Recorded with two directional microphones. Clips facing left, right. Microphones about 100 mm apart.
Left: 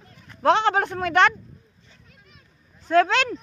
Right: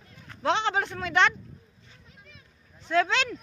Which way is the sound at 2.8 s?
50° left (ahead or behind).